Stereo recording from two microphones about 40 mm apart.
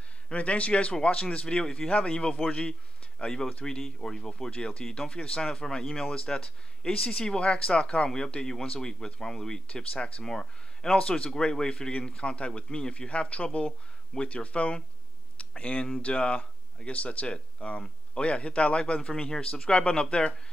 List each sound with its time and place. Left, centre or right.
0.3 s speech: left; by 4.3 s centre
4.5 s speech: left